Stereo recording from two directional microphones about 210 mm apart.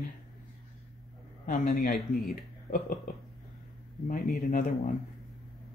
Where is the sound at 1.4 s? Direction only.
40° left (ahead or behind).